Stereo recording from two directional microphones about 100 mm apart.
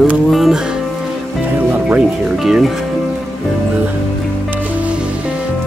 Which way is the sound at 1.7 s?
15° right (ahead or behind).